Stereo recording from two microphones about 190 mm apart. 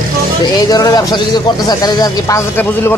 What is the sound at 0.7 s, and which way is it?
Speech, 20° left (ahead or behind).